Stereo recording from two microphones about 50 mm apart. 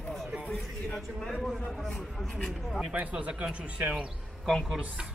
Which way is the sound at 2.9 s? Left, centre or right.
Centre.